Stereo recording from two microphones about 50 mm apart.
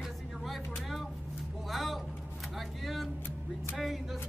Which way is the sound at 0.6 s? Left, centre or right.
Centre.